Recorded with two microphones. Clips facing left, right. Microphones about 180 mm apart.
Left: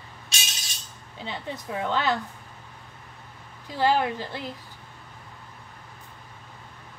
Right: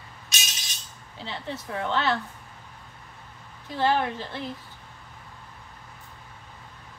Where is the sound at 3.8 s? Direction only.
15° left (ahead or behind).